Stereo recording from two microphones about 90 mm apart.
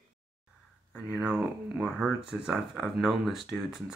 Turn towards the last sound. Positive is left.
turn(degrees=-5)  # may be behind; listen again after turning